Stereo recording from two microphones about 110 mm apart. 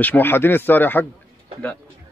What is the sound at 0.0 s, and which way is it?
A man's voice, 15° left (ahead or behind).